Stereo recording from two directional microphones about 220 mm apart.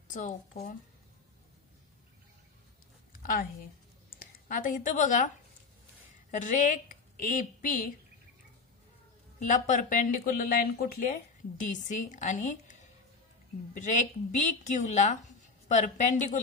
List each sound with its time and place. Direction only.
0.1 s speech: 35° left (ahead or behind)
3.1 s a sound: 40° left (ahead or behind)
4.2 s speech: 40° left (ahead or behind)
6.3 s a woman's voice: 35° left (ahead or behind)
9.4 s speech: 35° left (ahead or behind)